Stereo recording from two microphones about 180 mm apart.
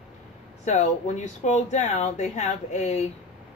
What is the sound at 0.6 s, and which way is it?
Speech, 40° left (ahead or behind).